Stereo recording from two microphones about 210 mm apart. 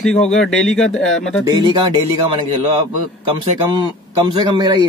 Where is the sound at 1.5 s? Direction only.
20° right (ahead or behind).